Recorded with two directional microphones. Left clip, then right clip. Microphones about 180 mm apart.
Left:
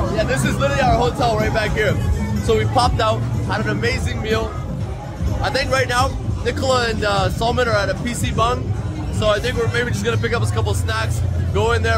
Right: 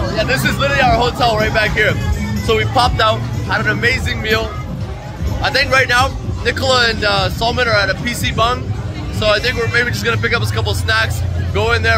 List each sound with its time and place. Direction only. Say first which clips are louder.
0.1 s a man's voice: right 7 dB; 10° left (ahead or behind)